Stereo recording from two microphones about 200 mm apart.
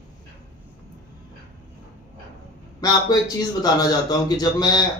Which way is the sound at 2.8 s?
20° left (ahead or behind).